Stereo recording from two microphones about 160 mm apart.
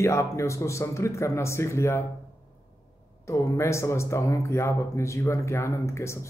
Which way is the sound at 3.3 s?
20° left (ahead or behind).